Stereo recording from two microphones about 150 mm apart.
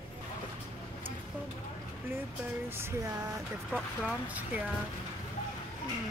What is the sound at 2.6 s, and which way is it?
Speech, 15° right (ahead or behind).